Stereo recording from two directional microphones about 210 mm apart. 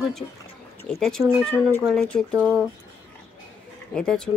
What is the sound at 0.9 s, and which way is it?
Speech, centre (ahead or behind).